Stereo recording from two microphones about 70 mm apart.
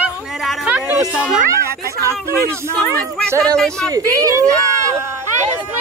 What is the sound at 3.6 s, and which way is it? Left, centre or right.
Speech, centre.